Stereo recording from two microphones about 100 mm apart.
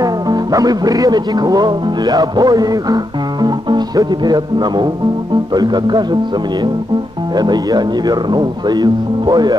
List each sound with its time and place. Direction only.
0.0 s speech: 40° right (ahead or behind)
7.3 s speech: 45° right (ahead or behind)